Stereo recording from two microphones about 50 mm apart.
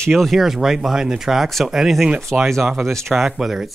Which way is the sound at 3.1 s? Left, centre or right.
Centre.